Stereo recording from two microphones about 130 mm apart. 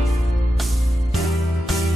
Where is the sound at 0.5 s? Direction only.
Centre (ahead or behind).